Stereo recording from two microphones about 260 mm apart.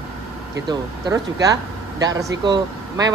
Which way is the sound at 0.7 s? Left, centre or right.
Centre.